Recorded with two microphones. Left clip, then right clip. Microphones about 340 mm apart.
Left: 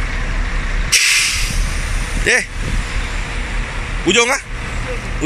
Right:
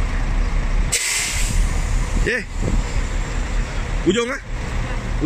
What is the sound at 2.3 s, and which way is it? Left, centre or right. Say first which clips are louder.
Speech: left 8 dB; centre.